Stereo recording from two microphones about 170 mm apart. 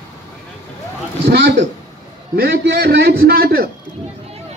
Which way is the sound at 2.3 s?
70° right (ahead or behind).